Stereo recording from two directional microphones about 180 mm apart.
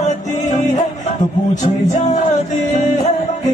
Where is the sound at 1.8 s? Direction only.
40° left (ahead or behind).